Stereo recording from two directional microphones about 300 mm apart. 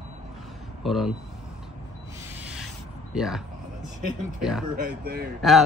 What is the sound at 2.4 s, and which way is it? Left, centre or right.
Rub, centre.